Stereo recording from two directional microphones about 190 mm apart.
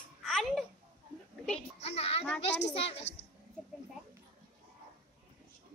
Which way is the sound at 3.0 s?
65° left (ahead or behind).